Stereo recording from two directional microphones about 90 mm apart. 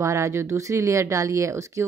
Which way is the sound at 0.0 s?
35° right (ahead or behind).